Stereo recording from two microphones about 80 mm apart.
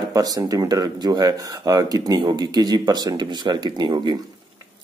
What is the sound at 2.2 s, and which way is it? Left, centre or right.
Speech, right.